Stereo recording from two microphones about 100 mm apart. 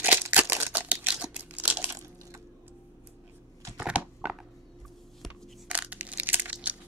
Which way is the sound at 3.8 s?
10° right (ahead or behind).